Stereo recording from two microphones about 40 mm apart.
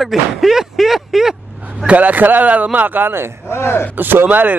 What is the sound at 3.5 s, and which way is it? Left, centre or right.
Speech, left.